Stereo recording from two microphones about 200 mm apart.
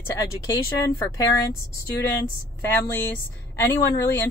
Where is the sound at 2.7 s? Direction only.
10° left (ahead or behind).